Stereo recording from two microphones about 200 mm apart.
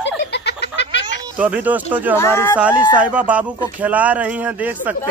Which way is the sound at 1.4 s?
10° right (ahead or behind).